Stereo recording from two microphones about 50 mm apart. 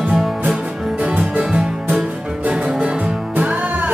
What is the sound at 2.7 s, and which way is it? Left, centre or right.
Music, centre.